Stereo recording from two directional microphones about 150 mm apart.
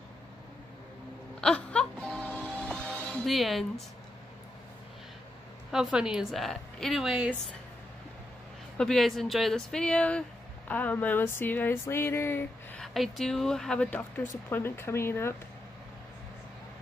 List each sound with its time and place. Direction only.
1.4 s music: 5° left (ahead or behind)
3.1 s speech: 5° left (ahead or behind)
5.7 s a woman's voice: 5° right (ahead or behind)
8.7 s a woman's voice: 5° left (ahead or behind)
12.8 s a woman's voice: centre (ahead or behind)